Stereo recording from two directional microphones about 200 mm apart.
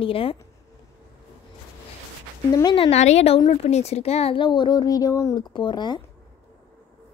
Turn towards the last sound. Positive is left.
turn(degrees=20)  # may be behind; listen again after turning